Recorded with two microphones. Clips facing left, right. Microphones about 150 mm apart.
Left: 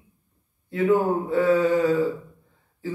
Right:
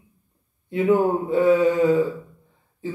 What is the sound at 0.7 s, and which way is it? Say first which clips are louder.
A man's voice: right 2 dB; 20° right (ahead or behind).